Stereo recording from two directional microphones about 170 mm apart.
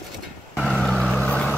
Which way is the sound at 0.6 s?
Centre (ahead or behind).